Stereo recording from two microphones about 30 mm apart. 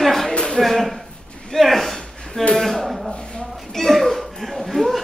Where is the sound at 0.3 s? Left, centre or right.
Left.